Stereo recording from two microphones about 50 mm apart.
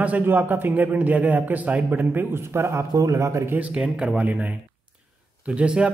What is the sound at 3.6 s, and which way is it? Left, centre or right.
A man's voice, right.